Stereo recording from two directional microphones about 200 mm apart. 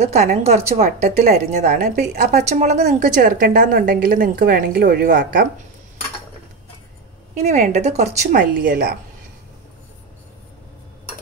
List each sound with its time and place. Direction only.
0.0 s a woman's voice: 35° right (ahead or behind)
7.3 s a woman's voice: 35° right (ahead or behind)